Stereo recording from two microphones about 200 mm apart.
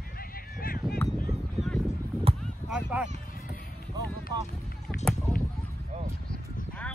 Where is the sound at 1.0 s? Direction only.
5° left (ahead or behind).